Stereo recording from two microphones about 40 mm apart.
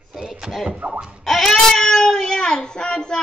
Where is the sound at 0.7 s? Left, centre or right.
Right.